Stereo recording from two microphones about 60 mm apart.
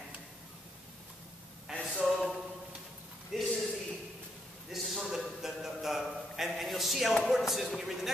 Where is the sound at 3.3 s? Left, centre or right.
Centre.